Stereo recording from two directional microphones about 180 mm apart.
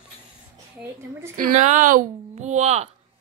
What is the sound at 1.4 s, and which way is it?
Speech, 45° right (ahead or behind).